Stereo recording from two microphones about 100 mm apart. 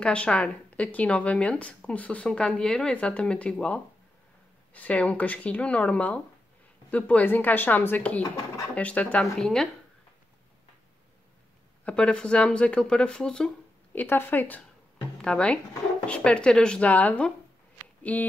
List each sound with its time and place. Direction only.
0.0 s speech: 10° left (ahead or behind)
11.8 s speech: 10° left (ahead or behind)
13.9 s speech: 20° left (ahead or behind)